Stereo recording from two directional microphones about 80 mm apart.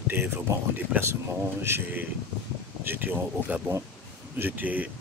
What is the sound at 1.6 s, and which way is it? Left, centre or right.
Speech, right.